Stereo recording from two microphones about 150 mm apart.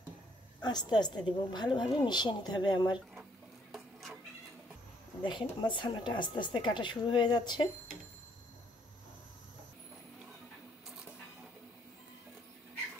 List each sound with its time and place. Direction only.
0.6 s a woman's voice: 30° left (ahead or behind)
3.7 s a sound: centre (ahead or behind)
5.2 s a woman's voice: 30° left (ahead or behind)